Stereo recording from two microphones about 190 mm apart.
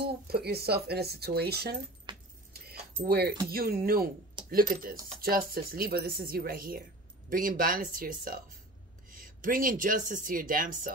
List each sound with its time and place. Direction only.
0.0 s speech: 60° right (ahead or behind)
2.1 s keys jangling: 25° right (ahead or behind)
2.7 s keys jangling: 55° right (ahead or behind)
3.4 s speech: 50° right (ahead or behind)